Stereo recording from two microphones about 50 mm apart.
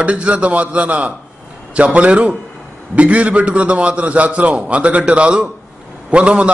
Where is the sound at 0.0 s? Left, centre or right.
Right.